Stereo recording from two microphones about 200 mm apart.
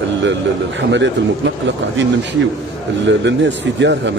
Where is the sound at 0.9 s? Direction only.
65° right (ahead or behind).